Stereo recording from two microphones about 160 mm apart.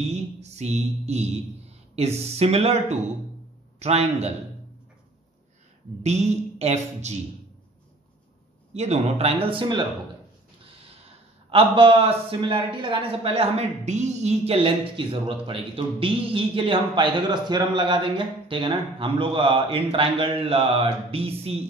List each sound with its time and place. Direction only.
0.1 s mantra: 45° right (ahead or behind)
3.8 s a man's voice: 40° right (ahead or behind)
6.0 s a woman's voice: 45° right (ahead or behind)
8.7 s a man's voice: 40° right (ahead or behind)
11.5 s a man's voice: 35° right (ahead or behind)